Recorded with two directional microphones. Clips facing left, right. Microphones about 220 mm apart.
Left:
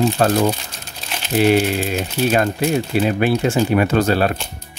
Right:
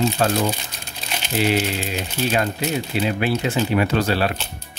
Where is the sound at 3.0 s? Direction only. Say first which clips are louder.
Left 3 dB; 50° left (ahead or behind).